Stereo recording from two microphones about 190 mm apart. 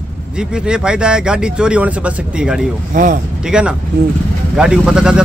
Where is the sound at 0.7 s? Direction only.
5° right (ahead or behind).